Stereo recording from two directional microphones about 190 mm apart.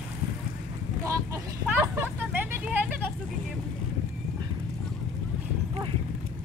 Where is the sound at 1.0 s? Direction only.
10° right (ahead or behind).